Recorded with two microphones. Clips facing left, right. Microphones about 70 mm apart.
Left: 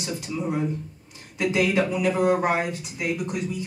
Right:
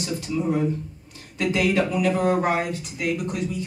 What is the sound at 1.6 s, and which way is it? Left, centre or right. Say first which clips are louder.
Speech: right 1 dB; left.